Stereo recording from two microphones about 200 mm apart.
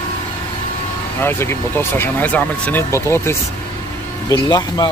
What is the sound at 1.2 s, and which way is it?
Speech, 10° left (ahead or behind).